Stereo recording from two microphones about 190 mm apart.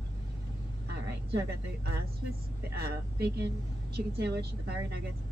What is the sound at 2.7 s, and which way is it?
Speech, 55° right (ahead or behind).